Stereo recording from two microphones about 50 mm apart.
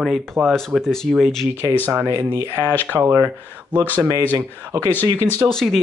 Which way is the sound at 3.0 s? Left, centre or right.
Right.